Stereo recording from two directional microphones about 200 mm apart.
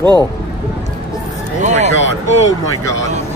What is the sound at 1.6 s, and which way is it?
Speech, 35° right (ahead or behind).